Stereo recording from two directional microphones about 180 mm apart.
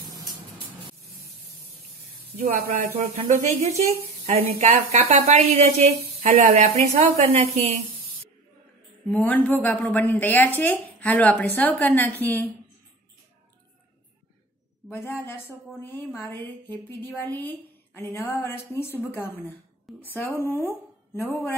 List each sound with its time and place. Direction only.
0.0 s spray: 20° right (ahead or behind)
2.3 s speech: 40° right (ahead or behind)
9.1 s a woman's voice: 10° left (ahead or behind)
14.9 s a woman's voice: 15° left (ahead or behind)